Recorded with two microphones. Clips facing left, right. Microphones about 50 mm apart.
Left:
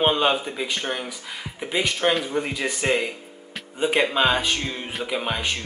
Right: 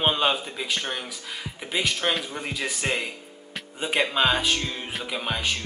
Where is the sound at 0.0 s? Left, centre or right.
Centre.